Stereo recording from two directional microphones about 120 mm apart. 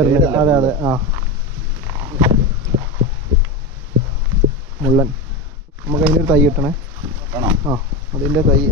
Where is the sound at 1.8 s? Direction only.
35° right (ahead or behind).